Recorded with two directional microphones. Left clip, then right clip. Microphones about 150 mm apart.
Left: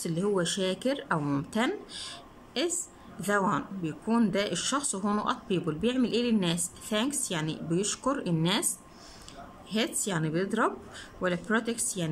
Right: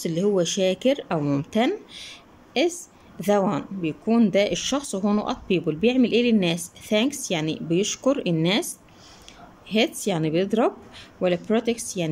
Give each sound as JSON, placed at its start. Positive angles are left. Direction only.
{"t": 0.0, "sound": "speech", "side_deg": -15}
{"t": 9.7, "sound": "speech", "side_deg": -15}